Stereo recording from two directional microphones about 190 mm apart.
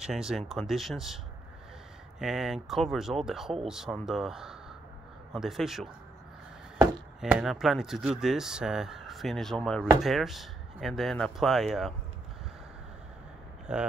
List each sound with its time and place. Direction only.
0.0 s speech: centre (ahead or behind)
7.2 s speech: 5° right (ahead or behind)
13.7 s speech: 5° right (ahead or behind)